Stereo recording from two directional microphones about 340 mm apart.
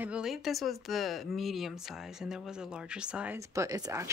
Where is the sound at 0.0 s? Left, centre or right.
Centre.